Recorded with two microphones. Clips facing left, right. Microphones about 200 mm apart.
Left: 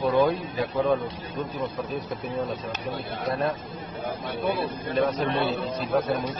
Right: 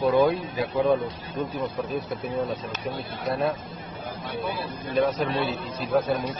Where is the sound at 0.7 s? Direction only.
Centre (ahead or behind).